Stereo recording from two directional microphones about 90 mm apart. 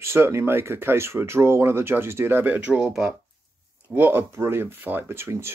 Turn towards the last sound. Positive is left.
turn(degrees=-30)  # may be behind; listen again after turning